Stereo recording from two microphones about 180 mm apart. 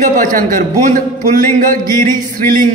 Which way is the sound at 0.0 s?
50° right (ahead or behind).